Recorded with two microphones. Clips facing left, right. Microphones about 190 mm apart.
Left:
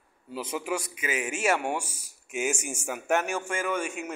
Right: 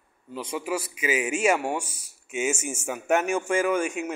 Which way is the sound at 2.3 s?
Centre (ahead or behind).